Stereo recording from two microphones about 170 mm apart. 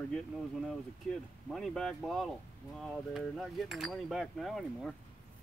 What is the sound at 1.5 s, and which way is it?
Speech, centre (ahead or behind).